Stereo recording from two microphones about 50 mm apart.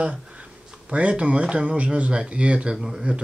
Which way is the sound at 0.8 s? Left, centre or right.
Right.